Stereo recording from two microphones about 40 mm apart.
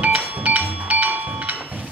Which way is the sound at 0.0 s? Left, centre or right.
Right.